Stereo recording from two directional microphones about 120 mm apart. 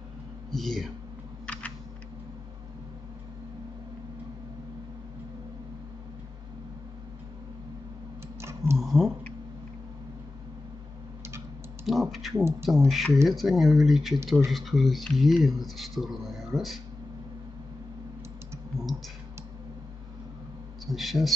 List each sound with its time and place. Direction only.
0.5 s speech: centre (ahead or behind)
1.4 s typing: 10° left (ahead or behind)
8.4 s tick: 20° right (ahead or behind)
8.7 s a sound: centre (ahead or behind)
11.8 s typing: centre (ahead or behind)
12.6 s speech: centre (ahead or behind)
20.8 s speech: centre (ahead or behind)